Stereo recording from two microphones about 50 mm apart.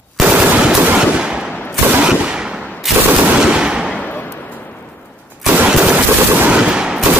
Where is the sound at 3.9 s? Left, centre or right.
Left.